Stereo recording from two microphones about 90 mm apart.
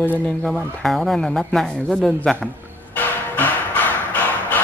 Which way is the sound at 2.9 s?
20° left (ahead or behind).